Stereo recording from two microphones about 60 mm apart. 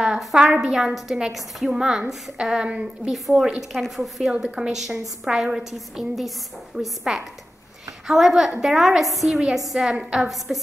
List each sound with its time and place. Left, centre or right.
0.0 s a woman's voice: centre
3.1 s a woman's voice: centre
10.5 s a woman's voice: right